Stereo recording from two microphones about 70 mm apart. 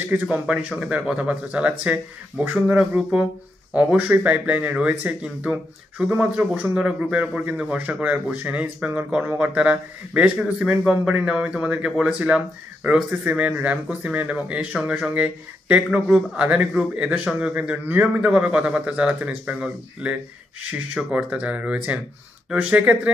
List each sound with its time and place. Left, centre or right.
0.3 s speech: centre
10.4 s a man's voice: centre
13.2 s speech: right
21.0 s speech: centre
21.3 s speech: centre